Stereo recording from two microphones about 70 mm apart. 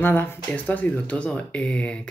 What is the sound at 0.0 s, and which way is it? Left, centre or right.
Speech, left.